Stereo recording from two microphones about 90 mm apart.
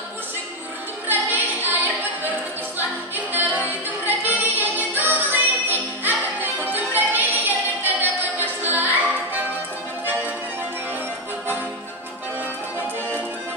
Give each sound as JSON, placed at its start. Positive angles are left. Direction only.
{"t": 1.0, "sound": "music", "side_deg": -20}
{"t": 3.5, "sound": "music", "side_deg": -20}